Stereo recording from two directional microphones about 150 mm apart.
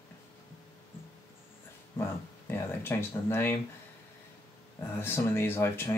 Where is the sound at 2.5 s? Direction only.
15° left (ahead or behind).